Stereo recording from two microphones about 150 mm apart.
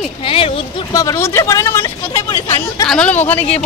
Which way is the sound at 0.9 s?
20° left (ahead or behind).